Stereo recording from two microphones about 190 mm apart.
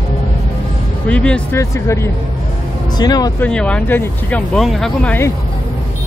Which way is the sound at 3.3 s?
5° left (ahead or behind).